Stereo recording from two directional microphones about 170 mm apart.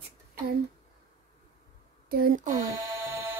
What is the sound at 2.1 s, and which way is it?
Speech, 50° right (ahead or behind).